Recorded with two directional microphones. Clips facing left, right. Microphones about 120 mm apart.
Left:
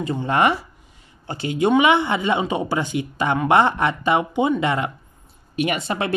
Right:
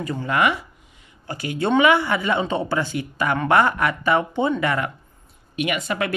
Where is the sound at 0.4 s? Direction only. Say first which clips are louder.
Left 2 dB; 35° left (ahead or behind).